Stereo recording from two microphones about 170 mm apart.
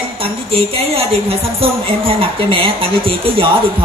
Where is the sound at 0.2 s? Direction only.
35° right (ahead or behind).